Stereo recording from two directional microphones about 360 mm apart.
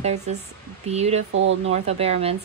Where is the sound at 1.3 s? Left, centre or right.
Right.